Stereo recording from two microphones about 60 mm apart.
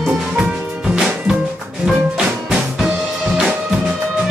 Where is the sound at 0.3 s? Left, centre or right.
Centre.